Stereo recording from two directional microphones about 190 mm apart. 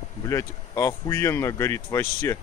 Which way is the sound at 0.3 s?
15° left (ahead or behind).